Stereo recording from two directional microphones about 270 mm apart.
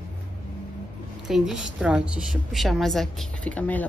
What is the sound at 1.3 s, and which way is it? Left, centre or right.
A woman's voice, centre.